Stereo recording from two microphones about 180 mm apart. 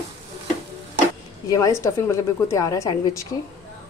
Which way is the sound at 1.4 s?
20° left (ahead or behind).